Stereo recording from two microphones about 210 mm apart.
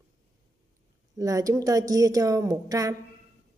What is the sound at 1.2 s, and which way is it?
A woman's voice, 15° right (ahead or behind).